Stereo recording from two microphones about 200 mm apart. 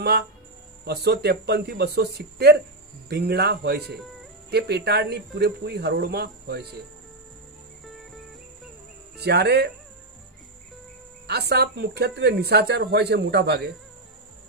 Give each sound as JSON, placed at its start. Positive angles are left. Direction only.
{"t": 0.8, "sound": "speech", "side_deg": -55}
{"t": 9.1, "sound": "speech", "side_deg": -55}
{"t": 11.2, "sound": "speech", "side_deg": -55}